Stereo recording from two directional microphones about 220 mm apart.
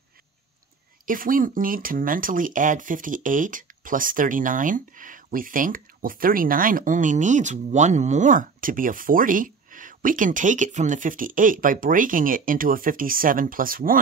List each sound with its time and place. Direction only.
1.0 s speech: 40° right (ahead or behind)